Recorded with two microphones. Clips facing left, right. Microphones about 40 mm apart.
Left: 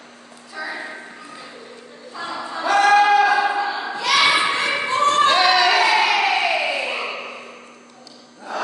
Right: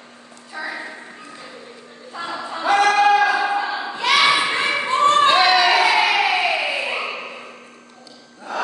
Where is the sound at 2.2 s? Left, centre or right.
Right.